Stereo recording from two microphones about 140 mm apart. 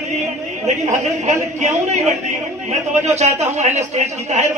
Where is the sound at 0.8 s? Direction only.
55° right (ahead or behind).